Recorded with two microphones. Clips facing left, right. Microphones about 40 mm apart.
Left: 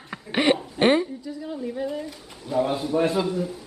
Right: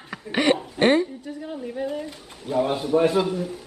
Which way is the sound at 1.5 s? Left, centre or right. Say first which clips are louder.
Even; right.